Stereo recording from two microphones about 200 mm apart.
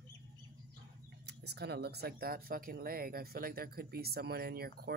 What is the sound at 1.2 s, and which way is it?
Speech, 55° right (ahead or behind).